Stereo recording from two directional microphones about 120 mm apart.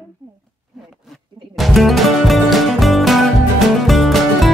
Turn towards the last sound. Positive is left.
turn(degrees=0)  # may be behind; listen again after turning